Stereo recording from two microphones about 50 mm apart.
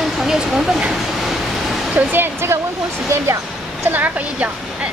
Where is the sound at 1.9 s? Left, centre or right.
Right.